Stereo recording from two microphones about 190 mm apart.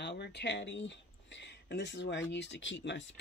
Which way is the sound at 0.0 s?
65° left (ahead or behind).